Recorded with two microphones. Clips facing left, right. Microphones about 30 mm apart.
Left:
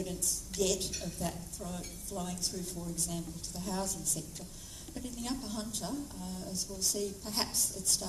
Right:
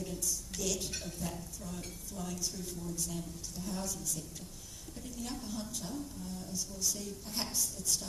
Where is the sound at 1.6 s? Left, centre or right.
Centre.